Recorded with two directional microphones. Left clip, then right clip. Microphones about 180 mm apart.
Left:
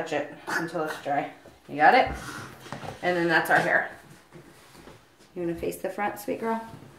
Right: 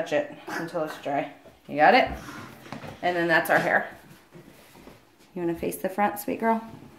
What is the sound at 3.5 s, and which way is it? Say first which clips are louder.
Speech: left 2 dB; 50° right (ahead or behind).